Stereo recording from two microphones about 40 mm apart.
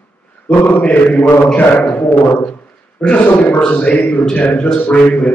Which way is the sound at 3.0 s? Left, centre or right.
Left.